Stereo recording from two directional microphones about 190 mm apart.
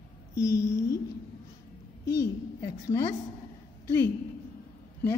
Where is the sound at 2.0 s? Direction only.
15° left (ahead or behind).